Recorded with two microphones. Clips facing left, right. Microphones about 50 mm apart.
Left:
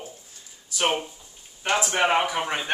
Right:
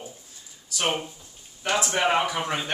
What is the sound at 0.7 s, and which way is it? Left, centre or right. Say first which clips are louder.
Speech: left 2 dB; centre.